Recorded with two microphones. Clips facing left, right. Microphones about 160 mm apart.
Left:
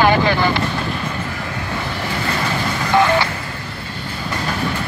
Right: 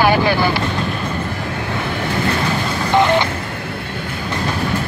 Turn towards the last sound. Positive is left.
turn(degrees=-20)  # may be behind; listen again after turning